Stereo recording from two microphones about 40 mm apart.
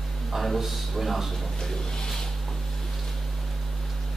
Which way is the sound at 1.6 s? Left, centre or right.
Centre.